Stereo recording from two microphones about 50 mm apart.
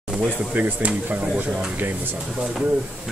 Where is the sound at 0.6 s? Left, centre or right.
Right.